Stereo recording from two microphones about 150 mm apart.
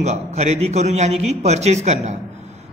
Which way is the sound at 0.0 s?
50° right (ahead or behind).